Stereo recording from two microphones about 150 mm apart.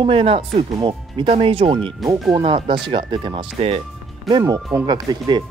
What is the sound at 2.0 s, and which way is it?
Speech, centre (ahead or behind).